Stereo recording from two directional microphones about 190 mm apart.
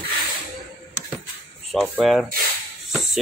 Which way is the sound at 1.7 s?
Centre (ahead or behind).